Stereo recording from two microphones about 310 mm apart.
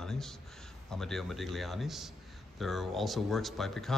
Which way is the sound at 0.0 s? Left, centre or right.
Centre.